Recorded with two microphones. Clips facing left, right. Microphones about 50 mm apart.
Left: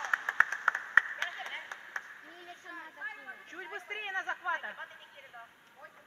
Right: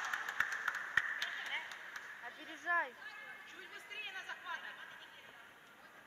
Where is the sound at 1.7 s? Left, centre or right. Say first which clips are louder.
Left 6 dB; left.